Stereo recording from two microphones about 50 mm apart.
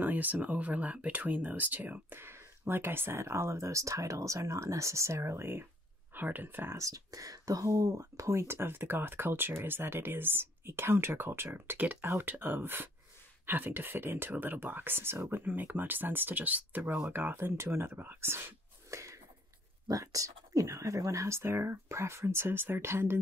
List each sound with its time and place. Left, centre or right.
0.0 s speech: right
2.1 s speech: right
6.1 s speech: right
7.7 s speech: right
15.2 s speech: right
17.1 s speech: right
18.9 s a sound: right
20.0 s speech: right